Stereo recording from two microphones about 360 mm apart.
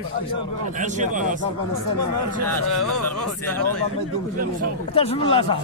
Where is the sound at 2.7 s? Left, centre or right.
Left.